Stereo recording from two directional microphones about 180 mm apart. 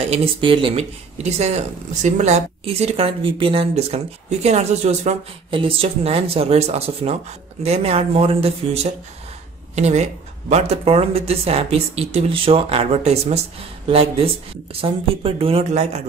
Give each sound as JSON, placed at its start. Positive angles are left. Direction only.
{"t": 0.1, "sound": "speech", "side_deg": -30}